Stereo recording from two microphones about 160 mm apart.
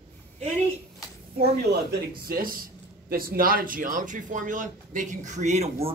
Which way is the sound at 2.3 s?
65° right (ahead or behind).